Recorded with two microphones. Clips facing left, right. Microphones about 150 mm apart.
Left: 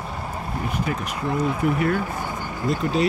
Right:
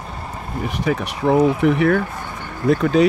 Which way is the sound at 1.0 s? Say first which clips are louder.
Right 9 dB; 75° right (ahead or behind).